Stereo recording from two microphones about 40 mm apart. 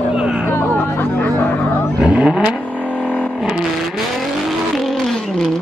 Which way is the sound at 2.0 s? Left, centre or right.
Right.